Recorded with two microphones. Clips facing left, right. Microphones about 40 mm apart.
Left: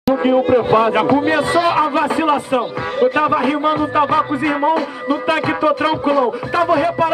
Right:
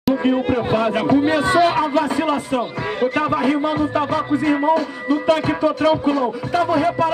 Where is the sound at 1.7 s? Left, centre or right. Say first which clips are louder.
Left 3 dB; centre.